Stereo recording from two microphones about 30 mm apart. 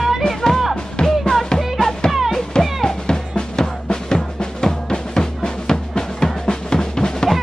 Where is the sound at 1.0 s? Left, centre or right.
Left.